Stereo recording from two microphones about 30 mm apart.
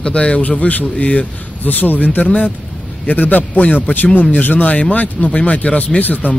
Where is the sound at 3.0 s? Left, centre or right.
Left.